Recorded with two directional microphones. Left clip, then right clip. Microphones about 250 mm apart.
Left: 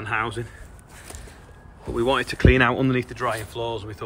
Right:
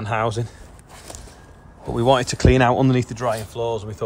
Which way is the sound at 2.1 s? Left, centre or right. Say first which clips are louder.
Right 2 dB; right.